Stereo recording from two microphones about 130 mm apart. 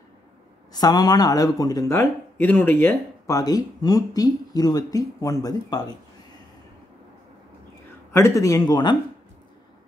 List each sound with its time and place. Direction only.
0.7 s speech: 30° left (ahead or behind)
8.1 s speech: 20° left (ahead or behind)